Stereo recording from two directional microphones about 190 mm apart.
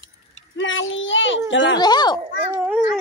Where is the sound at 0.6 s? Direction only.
90° left.